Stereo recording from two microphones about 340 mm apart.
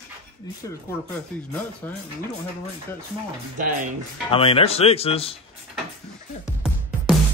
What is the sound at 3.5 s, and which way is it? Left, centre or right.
Speech, right.